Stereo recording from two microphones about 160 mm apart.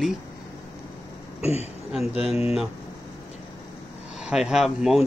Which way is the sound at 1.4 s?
40° left (ahead or behind).